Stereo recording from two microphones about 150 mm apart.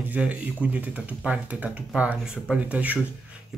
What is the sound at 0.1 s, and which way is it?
Speech, 10° right (ahead or behind).